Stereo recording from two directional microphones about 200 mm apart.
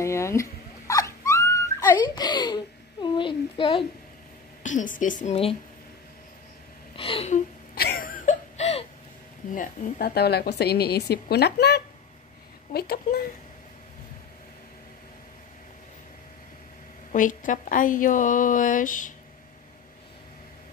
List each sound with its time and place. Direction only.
0.0 s dog: 15° left (ahead or behind)
4.6 s a woman's voice: 40° left (ahead or behind)
7.0 s a sound: 30° left (ahead or behind)
7.7 s a sound: 50° left (ahead or behind); by 8.8 s 35° left (ahead or behind)
9.6 s a woman's voice: 50° left (ahead or behind)
17.1 s a woman's voice: 40° left (ahead or behind)